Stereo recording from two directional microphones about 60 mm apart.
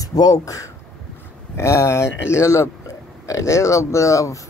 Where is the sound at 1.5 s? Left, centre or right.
Left.